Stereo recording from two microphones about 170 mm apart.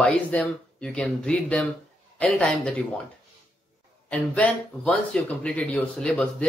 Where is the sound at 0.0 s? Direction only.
5° left (ahead or behind).